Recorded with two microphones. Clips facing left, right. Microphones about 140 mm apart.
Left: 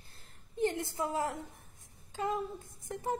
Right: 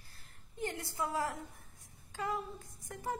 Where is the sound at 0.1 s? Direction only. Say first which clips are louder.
Left 9 dB; 20° left (ahead or behind).